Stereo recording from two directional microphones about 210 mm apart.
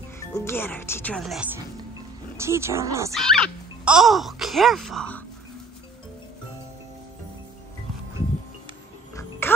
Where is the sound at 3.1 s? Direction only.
Centre (ahead or behind).